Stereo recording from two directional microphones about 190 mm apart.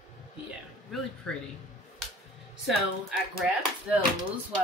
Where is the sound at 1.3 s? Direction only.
5° left (ahead or behind).